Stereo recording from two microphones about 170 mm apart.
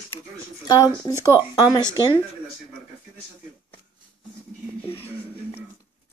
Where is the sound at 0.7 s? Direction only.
25° left (ahead or behind).